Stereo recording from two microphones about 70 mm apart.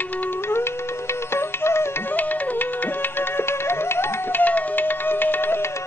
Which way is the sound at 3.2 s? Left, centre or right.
Left.